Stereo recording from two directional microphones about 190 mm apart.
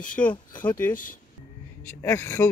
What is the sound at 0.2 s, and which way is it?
Speech, 20° left (ahead or behind).